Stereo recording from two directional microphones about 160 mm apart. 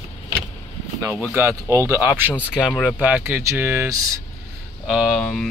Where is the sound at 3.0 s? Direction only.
10° right (ahead or behind).